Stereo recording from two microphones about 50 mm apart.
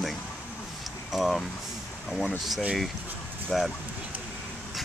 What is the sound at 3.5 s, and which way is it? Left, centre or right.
Speech, centre.